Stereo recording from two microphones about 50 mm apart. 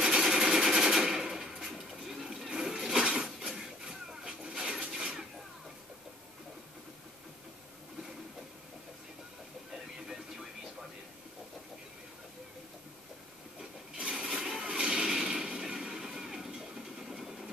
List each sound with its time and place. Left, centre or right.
0.0 s machine gun: centre
3.3 s a sound: centre
9.7 s music: centre
13.6 s wood: centre
14.2 s a sound: centre
17.1 s engine: centre